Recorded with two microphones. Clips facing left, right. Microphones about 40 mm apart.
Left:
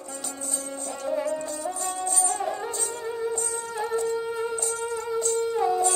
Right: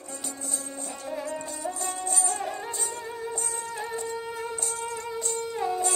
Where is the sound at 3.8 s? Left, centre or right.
Centre.